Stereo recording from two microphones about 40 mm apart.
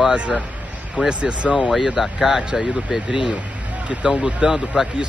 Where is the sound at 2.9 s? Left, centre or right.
Right.